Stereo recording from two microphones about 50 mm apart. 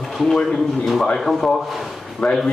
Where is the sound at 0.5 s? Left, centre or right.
Centre.